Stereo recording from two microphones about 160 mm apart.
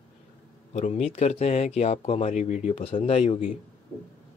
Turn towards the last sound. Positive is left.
turn(degrees=40)  # may be behind; listen again after turning